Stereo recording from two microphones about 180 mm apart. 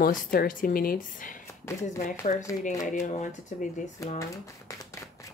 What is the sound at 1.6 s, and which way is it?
Speech, 15° left (ahead or behind).